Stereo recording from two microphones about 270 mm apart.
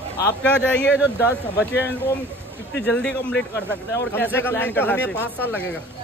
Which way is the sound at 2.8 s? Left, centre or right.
Centre.